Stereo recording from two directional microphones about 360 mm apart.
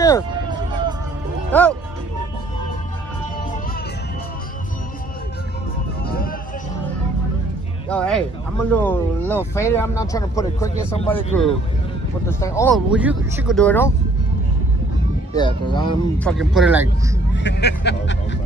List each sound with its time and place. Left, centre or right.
0.5 s vehicle: centre
1.5 s speech: centre
6.0 s a sound: left
7.9 s speech: centre
15.3 s speech: centre
16.3 s speech: centre
17.4 s a sound: left